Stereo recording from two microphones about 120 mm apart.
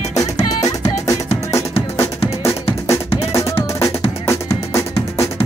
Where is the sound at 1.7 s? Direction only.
55° left (ahead or behind).